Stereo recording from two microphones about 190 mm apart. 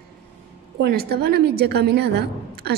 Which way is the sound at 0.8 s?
55° right (ahead or behind).